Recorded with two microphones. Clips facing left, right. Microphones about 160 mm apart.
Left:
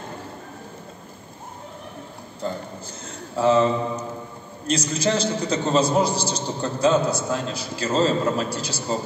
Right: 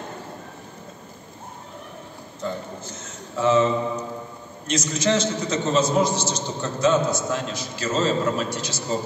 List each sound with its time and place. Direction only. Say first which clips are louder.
2.4 s a man's voice: even; 30° left (ahead or behind)
4.6 s a man's voice: even; 30° left (ahead or behind)